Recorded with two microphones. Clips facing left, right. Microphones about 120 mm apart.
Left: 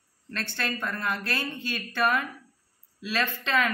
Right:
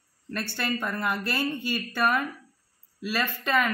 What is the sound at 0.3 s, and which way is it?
Speech, 10° right (ahead or behind).